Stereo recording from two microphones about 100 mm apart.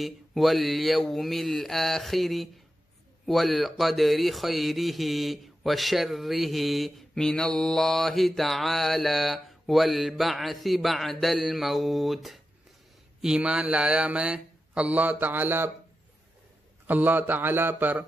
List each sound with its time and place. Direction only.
0.0 s speech: centre (ahead or behind); by 15.7 s 20° right (ahead or behind)
16.8 s speech: 20° right (ahead or behind)